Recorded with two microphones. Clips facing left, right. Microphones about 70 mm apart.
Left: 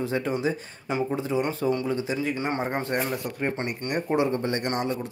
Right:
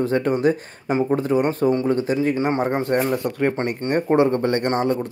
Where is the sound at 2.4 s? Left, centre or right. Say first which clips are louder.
Right 7 dB; right.